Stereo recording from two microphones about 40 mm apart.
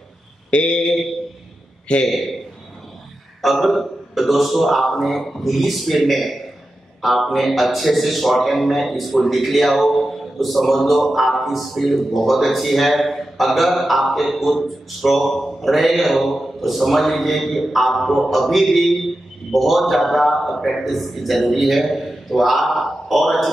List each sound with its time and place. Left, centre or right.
0.5 s mantra: left
2.0 s a man's voice: centre
3.4 s a man's voice: centre